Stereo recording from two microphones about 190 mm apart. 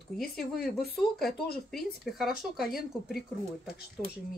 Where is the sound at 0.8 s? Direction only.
55° left (ahead or behind).